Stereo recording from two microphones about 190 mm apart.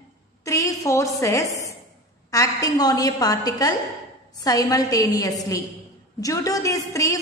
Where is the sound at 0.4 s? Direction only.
15° left (ahead or behind).